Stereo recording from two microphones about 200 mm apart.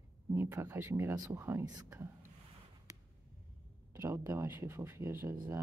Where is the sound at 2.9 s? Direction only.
15° right (ahead or behind).